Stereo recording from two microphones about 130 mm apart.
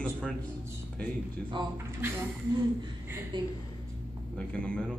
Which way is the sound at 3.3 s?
35° right (ahead or behind).